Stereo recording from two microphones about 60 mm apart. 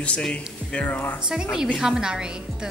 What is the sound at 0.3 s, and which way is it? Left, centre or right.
Speech, centre.